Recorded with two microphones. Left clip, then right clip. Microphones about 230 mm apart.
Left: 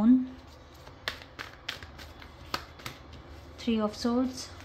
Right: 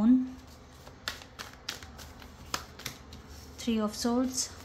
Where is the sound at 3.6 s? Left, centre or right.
Centre.